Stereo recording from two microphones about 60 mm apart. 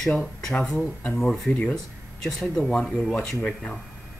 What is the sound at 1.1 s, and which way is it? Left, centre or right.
Speech, centre.